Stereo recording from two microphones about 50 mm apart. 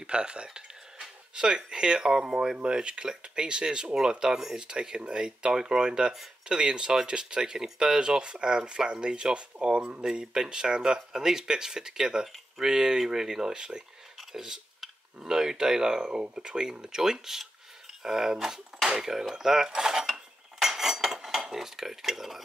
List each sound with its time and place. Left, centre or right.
0.0 s speech: centre
14.3 s cutlery: centre
15.2 s speech: centre
20.1 s cutlery: centre
21.4 s speech: centre